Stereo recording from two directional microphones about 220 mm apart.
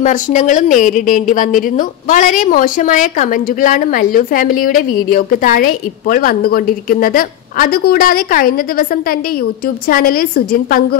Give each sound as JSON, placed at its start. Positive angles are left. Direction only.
{"t": 0.0, "sound": "a woman's voice", "side_deg": 35}
{"t": 9.8, "sound": "a woman's voice", "side_deg": 40}